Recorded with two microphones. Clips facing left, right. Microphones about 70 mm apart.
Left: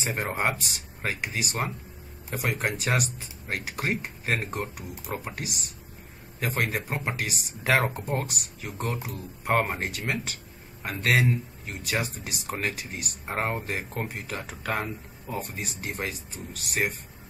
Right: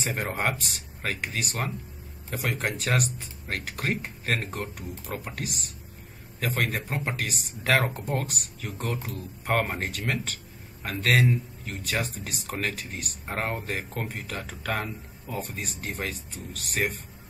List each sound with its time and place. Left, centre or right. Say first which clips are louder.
0.0 s speech: left 1 dB; centre